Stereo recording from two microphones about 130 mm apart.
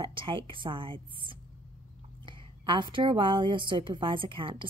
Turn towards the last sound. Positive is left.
turn(degrees=-40)  # may be behind; listen again after turning